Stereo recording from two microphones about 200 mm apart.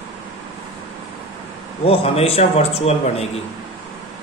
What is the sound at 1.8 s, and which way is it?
A man's voice, 30° left (ahead or behind).